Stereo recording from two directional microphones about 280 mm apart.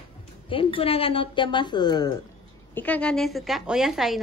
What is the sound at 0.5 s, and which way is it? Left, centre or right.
A woman's voice, centre.